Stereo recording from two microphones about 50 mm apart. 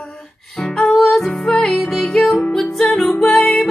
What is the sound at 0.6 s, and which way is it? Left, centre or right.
Music, left.